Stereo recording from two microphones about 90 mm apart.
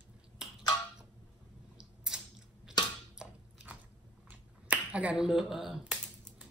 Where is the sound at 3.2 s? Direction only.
10° right (ahead or behind).